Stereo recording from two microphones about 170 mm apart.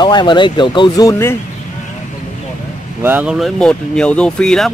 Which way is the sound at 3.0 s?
10° right (ahead or behind).